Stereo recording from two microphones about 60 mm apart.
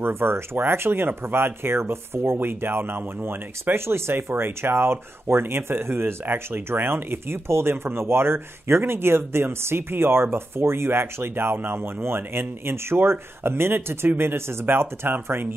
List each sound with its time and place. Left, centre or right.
0.0 s speech: right